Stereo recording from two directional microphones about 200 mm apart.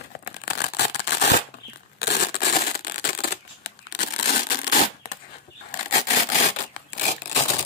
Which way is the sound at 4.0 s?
40° left (ahead or behind).